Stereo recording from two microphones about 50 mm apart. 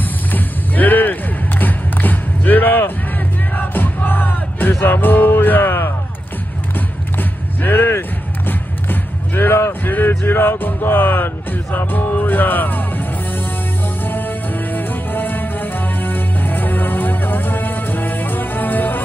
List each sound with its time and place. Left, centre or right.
0.3 s music: left
1.6 s a sound: left
3.5 s music: left
7.2 s a sound: left
8.5 s music: left
14.0 s music: left